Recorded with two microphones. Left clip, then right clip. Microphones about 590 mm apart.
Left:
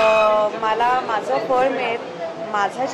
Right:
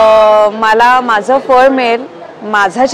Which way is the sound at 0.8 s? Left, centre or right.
Right.